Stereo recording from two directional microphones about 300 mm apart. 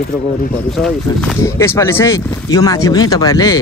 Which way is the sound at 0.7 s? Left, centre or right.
Centre.